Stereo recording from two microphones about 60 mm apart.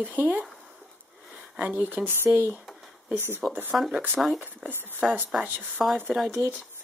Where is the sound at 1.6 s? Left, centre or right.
Right.